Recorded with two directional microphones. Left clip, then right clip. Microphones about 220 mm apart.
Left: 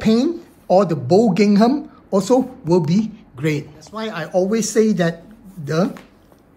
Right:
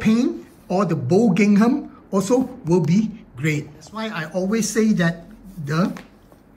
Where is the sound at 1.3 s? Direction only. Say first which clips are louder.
Left 3 dB; 15° left (ahead or behind).